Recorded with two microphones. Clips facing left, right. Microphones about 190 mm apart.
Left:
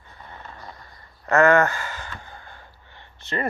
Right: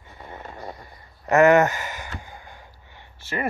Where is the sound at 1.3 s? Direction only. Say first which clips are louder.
Right 2 dB; 15° right (ahead or behind).